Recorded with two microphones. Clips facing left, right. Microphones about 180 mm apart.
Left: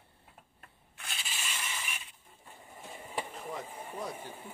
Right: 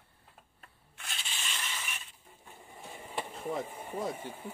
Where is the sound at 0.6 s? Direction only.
Centre (ahead or behind).